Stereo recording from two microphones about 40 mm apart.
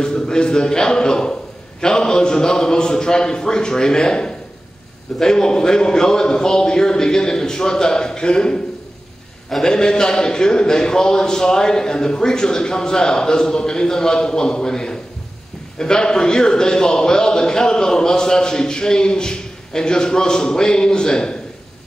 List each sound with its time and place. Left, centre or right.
0.0 s a man's voice: centre
9.7 s a man's voice: centre